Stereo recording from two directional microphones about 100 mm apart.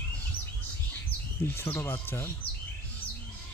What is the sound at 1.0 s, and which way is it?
Speech, 20° left (ahead or behind).